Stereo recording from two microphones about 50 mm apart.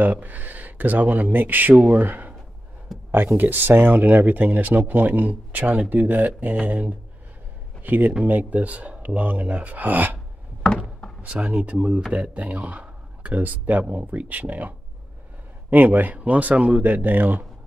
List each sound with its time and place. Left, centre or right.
0.0 s speech: right
3.3 s speech: right
10.6 s a sound: centre
11.3 s speech: right
15.7 s speech: right